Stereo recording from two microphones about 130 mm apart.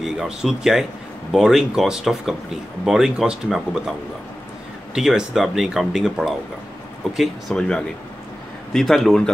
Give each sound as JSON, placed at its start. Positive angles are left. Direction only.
{"t": 0.0, "sound": "speech", "side_deg": 0}
{"t": 4.9, "sound": "speech", "side_deg": -5}